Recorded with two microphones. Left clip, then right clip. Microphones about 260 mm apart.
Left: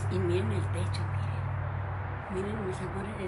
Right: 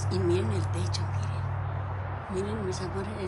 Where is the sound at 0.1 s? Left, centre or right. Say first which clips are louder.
Right 3 dB; centre.